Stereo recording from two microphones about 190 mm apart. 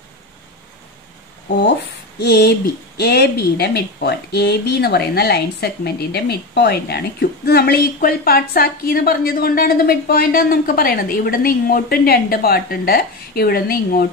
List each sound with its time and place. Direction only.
2.1 s a woman's voice: 55° left (ahead or behind)